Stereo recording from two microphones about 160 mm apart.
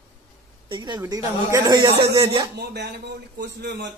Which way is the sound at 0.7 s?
30° right (ahead or behind).